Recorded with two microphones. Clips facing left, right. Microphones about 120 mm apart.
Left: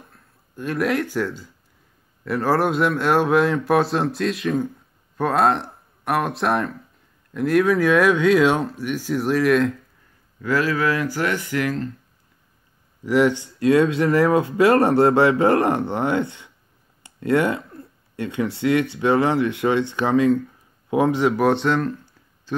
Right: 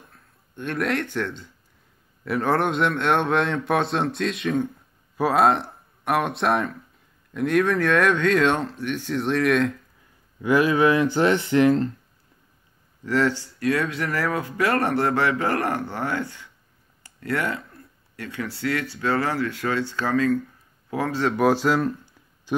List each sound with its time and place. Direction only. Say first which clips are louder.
0.1 s a man's voice: left 2 dB; centre (ahead or behind)
10.4 s speech: right 3 dB; 20° right (ahead or behind)
13.0 s speech: left 4 dB; 15° left (ahead or behind)
21.4 s speech: left 1 dB; centre (ahead or behind)